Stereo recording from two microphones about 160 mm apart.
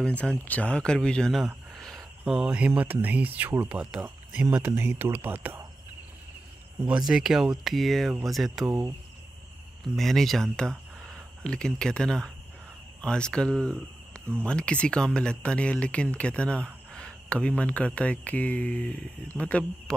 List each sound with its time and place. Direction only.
0.0 s speech: 5° left (ahead or behind); by 5.7 s 15° right (ahead or behind)
7.1 s speech: 5° right (ahead or behind)
8.6 s speech: 15° right (ahead or behind)
9.9 s speech: centre (ahead or behind)